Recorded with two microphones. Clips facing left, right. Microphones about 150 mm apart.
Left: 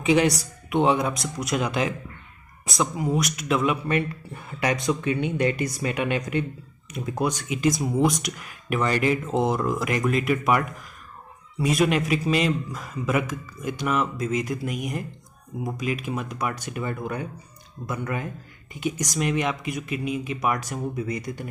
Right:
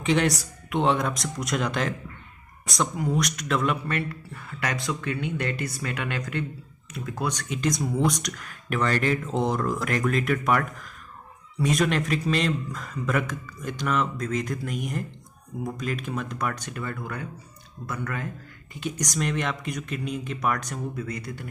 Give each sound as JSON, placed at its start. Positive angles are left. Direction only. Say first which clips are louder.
{"t": 0.0, "sound": "a man's voice", "louder": "left 3 dB", "side_deg": 5}